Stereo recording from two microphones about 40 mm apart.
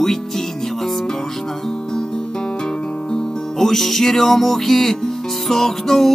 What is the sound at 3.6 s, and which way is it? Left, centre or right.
Music, centre.